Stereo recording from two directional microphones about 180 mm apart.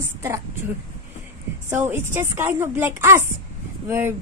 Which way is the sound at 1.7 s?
15° right (ahead or behind).